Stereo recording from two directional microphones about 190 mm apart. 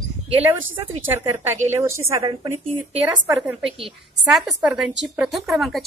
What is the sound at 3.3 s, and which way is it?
Speech, centre (ahead or behind).